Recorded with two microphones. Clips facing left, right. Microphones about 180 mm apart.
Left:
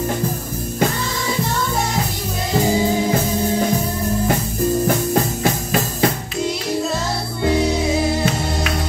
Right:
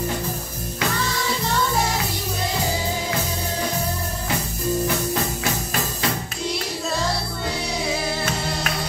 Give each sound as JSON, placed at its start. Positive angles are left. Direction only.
{"t": 4.8, "sound": "music", "side_deg": 50}